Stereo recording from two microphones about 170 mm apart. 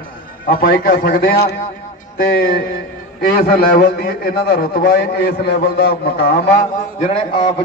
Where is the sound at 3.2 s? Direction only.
60° left (ahead or behind).